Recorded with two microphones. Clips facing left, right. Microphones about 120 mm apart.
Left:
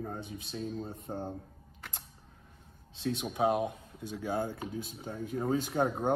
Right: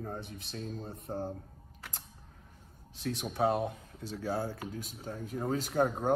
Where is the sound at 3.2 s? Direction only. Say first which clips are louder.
Even; 10° left (ahead or behind).